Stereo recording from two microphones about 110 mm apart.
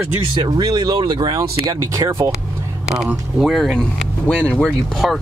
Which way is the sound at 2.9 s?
5° right (ahead or behind).